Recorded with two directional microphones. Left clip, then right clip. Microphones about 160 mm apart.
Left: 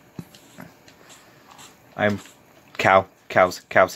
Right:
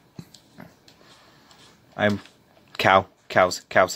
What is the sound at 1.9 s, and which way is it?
Speech, 5° right (ahead or behind).